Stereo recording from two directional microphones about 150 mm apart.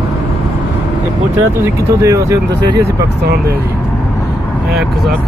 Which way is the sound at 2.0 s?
20° right (ahead or behind).